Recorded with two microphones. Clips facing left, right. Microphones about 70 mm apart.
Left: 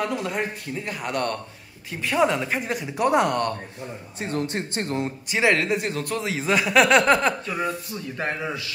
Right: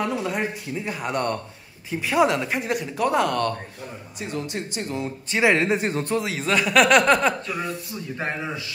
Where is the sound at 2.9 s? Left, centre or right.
Left.